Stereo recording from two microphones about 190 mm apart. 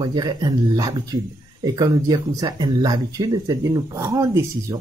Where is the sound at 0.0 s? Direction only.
20° right (ahead or behind).